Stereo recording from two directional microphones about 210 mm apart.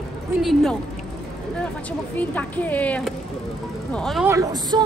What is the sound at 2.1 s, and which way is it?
A woman's voice, 10° left (ahead or behind).